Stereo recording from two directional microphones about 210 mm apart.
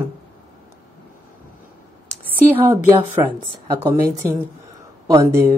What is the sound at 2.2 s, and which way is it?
A woman's voice, 10° right (ahead or behind).